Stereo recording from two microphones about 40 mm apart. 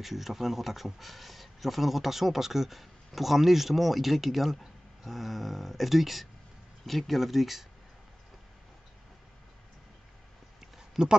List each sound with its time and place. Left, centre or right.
0.0 s speech: centre
11.0 s speech: centre